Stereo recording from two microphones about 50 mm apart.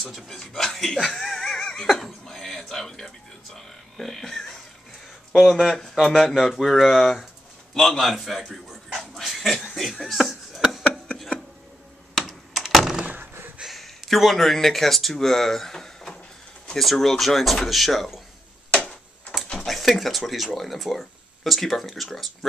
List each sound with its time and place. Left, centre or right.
0.0 s speech: centre
1.1 s a sound: centre
3.5 s speech: centre
5.3 s speech: centre
9.1 s a sound: centre
12.2 s computer keyboard: centre
13.0 s a sound: right
13.7 s speech: centre
19.6 s speech: centre